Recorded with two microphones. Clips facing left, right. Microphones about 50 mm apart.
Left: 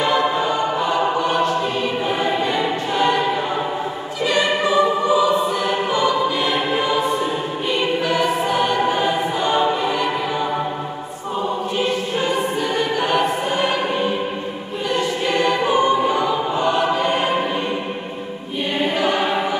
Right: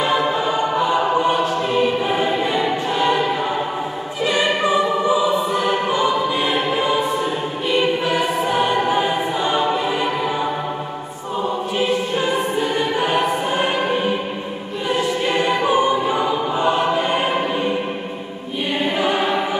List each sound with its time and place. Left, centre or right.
0.0 s music: centre
1.8 s choir: centre
4.2 s choir: centre
5.9 s choir: centre
8.0 s choir: centre
11.8 s choir: centre
14.9 s choir: centre
18.9 s choir: centre